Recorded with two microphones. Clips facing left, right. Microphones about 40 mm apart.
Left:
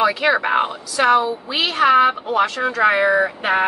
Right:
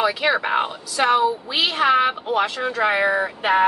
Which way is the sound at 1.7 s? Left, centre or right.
Centre.